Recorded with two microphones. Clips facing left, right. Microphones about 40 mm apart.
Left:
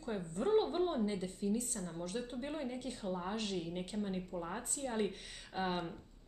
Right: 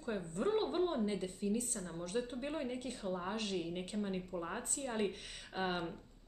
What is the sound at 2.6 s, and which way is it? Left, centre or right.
Speech, right.